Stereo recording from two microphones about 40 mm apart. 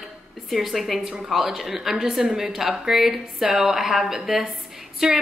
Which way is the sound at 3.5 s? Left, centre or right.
Centre.